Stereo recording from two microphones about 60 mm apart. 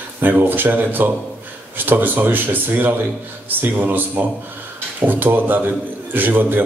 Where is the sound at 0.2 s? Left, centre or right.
Right.